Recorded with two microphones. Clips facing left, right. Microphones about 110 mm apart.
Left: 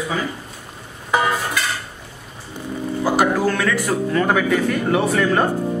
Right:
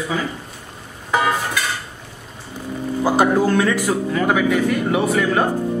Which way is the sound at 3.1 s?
20° right (ahead or behind).